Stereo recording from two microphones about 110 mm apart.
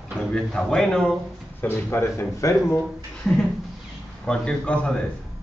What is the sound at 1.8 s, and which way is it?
A man's voice, 20° left (ahead or behind).